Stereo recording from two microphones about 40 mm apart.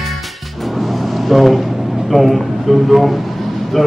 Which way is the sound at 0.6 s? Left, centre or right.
Centre.